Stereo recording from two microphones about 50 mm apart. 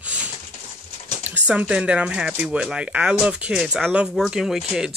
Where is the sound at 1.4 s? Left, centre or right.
Right.